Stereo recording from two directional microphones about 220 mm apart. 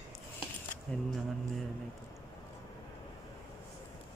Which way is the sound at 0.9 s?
5° left (ahead or behind).